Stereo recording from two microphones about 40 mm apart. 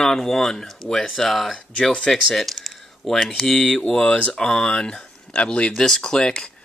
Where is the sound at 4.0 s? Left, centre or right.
Left.